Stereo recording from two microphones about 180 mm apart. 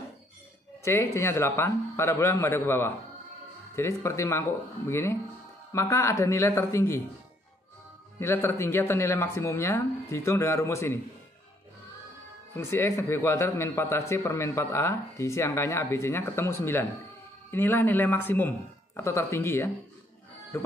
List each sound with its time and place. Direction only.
0.8 s a man's voice: 15° left (ahead or behind)
8.2 s a man's voice: 15° left (ahead or behind)
12.5 s a man's voice: 15° left (ahead or behind)